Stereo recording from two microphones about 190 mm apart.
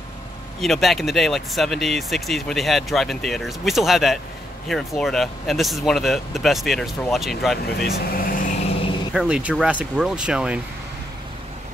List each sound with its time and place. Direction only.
0.6 s speech: centre (ahead or behind)
7.8 s vehicle: 50° left (ahead or behind)
9.1 s speech: 5° right (ahead or behind)